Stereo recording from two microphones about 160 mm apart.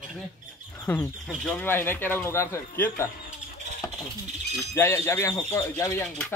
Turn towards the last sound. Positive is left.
turn(degrees=15)  # may be behind; listen again after turning